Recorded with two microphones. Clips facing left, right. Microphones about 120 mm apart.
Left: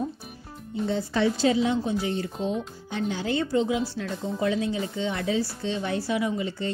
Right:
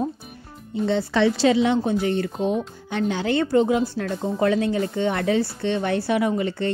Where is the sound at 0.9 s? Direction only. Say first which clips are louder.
Right 5 dB; 75° right (ahead or behind).